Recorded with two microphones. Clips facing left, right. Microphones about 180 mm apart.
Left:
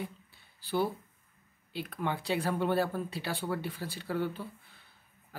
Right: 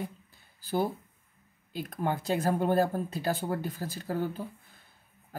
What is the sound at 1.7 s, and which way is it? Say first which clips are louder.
Speech: right 3 dB; 45° right (ahead or behind).